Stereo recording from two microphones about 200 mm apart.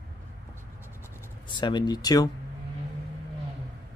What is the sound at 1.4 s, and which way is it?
Speech, 25° left (ahead or behind).